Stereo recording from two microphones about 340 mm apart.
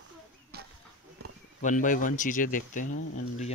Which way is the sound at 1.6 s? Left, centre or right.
Left.